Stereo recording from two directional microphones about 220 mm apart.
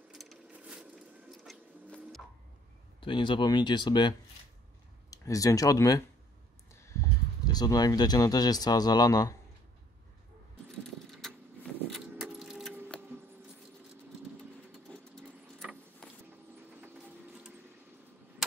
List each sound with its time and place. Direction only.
0.1 s a sound: centre (ahead or behind)
3.0 s speech: 20° left (ahead or behind)
5.1 s speech: 15° left (ahead or behind)
7.5 s speech: 15° left (ahead or behind)
11.1 s car: centre (ahead or behind)
14.9 s engine: 5° left (ahead or behind)
16.7 s a sound: 5° right (ahead or behind)